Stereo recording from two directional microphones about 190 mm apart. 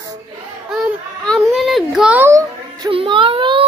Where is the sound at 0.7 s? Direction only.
Centre (ahead or behind); by 2.9 s 15° right (ahead or behind).